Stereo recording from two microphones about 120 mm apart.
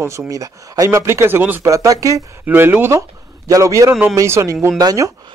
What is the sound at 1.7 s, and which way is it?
Speech, 25° right (ahead or behind).